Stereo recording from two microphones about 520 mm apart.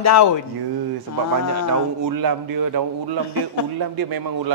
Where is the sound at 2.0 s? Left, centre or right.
Right.